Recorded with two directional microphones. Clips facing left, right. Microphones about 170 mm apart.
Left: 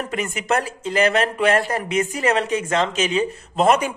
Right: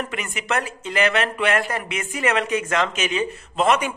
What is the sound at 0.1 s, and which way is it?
A man's voice, 40° left (ahead or behind).